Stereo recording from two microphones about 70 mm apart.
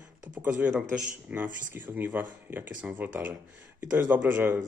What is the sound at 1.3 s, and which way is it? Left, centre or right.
A man's voice, right.